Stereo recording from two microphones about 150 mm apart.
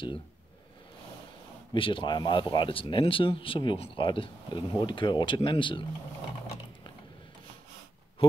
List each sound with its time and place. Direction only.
1.7 s speech: 35° left (ahead or behind)